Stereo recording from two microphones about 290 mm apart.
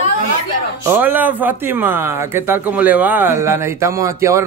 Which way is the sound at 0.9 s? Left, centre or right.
Centre.